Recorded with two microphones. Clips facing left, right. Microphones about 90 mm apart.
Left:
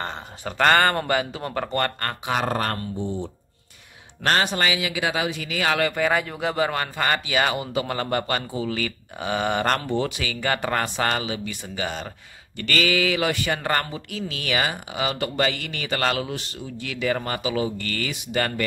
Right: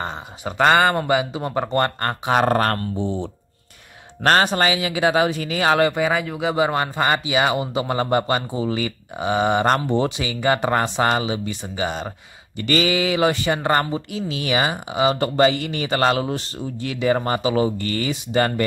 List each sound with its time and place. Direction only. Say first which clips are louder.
0.0 s speech: right 3 dB; 10° right (ahead or behind); by 2.3 s 30° right (ahead or behind)
2.3 s speech: right 7 dB; 50° right (ahead or behind)
3.0 s speech: right 4 dB; 90° right
4.2 s speech: right 5 dB; 45° right (ahead or behind); by 6.0 s 25° right (ahead or behind)
6.0 s speech: right 2 dB; 5° right (ahead or behind)
6.5 s speech: right 5 dB; 20° right (ahead or behind)